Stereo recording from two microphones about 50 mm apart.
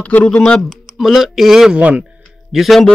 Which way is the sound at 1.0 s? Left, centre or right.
Centre.